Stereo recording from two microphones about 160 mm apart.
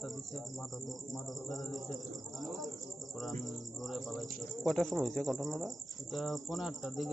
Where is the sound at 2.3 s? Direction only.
Centre (ahead or behind).